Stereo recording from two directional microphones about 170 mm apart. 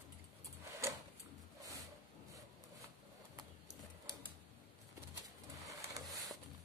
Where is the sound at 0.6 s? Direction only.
15° right (ahead or behind).